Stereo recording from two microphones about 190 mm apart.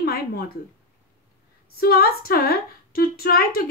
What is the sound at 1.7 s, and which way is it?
Speech, 50° left (ahead or behind).